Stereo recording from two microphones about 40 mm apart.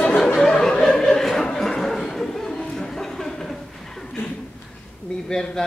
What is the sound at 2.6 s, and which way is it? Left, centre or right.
Chuckle, centre.